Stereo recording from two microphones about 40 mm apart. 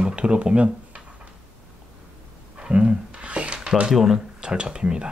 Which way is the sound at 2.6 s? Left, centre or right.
Right.